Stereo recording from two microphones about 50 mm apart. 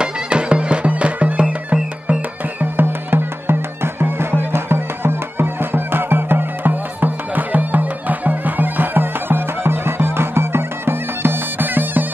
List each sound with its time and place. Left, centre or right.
0.0 s music: centre
2.6 s music: right